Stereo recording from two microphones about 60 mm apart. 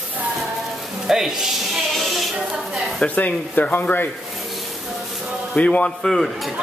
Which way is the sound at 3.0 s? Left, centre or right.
Left.